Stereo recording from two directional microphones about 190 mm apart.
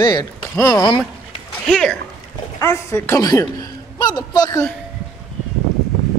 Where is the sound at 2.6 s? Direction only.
15° left (ahead or behind).